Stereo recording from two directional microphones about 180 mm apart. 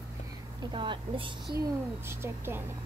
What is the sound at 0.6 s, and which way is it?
Speech, 25° right (ahead or behind).